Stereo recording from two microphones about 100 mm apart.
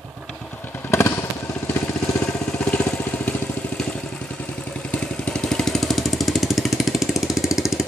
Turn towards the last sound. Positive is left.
turn(degrees=-5)  # may be behind; listen again after turning